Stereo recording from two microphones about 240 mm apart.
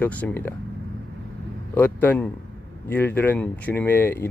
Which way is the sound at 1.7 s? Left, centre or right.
Centre.